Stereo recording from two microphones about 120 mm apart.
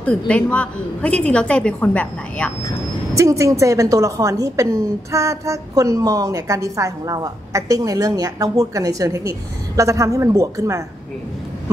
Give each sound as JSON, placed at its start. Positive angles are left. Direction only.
{"t": 0.3, "sound": "a woman's voice", "side_deg": 10}
{"t": 3.2, "sound": "a woman's voice", "side_deg": -25}